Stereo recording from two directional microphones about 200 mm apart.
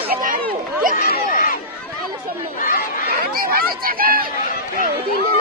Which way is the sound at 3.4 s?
45° right (ahead or behind).